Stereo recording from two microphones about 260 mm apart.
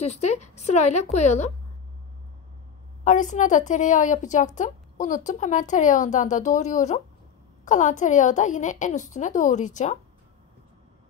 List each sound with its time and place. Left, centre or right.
0.0 s a woman's voice: left
3.0 s a woman's voice: left